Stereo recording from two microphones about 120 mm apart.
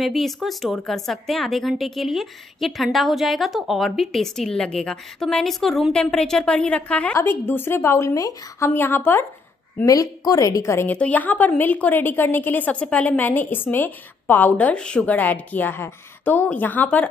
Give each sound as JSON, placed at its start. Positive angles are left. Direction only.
{"t": 0.0, "sound": "a woman's voice", "side_deg": 0}
{"t": 9.8, "sound": "a woman's voice", "side_deg": 30}